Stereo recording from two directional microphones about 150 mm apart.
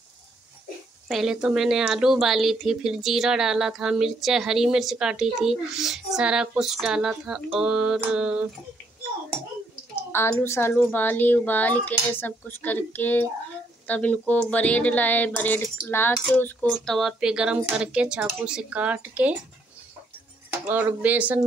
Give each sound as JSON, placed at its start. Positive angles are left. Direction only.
{"t": 1.0, "sound": "a woman's voice", "side_deg": 0}
{"t": 10.1, "sound": "a woman's voice", "side_deg": 15}
{"t": 20.6, "sound": "speech", "side_deg": -10}